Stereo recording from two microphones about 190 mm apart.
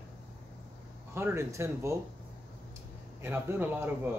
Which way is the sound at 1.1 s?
15° right (ahead or behind).